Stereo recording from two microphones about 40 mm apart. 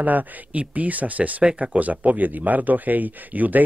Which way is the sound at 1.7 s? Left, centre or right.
Right.